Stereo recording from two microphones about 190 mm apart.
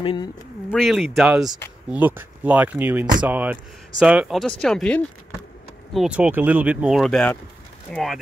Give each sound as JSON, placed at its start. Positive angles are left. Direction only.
{"t": 0.0, "sound": "speech", "side_deg": 25}
{"t": 0.7, "sound": "speech", "side_deg": 0}